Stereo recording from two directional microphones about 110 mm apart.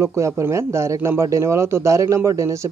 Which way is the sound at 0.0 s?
25° right (ahead or behind).